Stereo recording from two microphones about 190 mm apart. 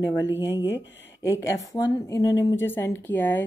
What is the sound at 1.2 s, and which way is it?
Speech, 15° left (ahead or behind).